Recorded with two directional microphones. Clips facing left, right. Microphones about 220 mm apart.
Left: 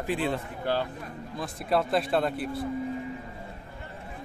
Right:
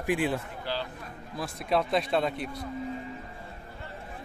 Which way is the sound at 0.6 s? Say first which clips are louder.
Left 6 dB; 50° left (ahead or behind).